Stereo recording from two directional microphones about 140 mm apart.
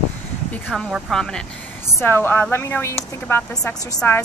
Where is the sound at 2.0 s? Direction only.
15° left (ahead or behind).